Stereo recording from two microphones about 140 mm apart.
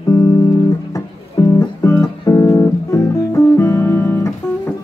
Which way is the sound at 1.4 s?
20° left (ahead or behind).